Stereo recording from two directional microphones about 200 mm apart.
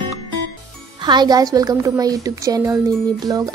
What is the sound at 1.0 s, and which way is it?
A woman's voice, 20° right (ahead or behind).